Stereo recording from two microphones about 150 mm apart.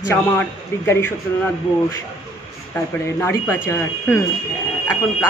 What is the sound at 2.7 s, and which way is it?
A man's voice, 15° left (ahead or behind).